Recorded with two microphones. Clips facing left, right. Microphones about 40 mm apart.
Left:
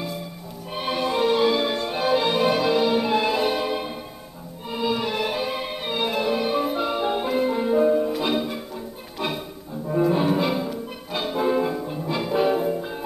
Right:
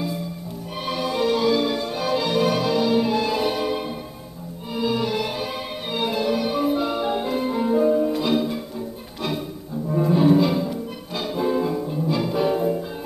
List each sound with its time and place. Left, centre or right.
0.7 s music: left
7.1 s music: centre
9.8 s music: centre